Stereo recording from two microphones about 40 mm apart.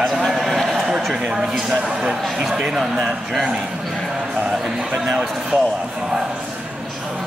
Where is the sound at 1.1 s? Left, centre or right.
Centre.